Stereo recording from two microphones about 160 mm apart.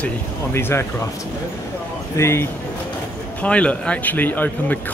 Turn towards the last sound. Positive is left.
turn(degrees=10)  # may be behind; listen again after turning